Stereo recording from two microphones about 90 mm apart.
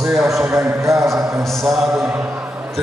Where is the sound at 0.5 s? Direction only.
35° right (ahead or behind).